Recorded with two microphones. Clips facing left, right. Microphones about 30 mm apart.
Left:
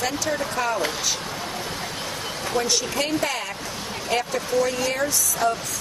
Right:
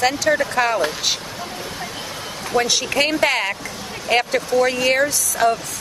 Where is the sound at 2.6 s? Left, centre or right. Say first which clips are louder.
Right 5 dB; right.